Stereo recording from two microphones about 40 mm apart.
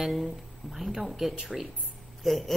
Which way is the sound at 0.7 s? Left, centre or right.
Centre.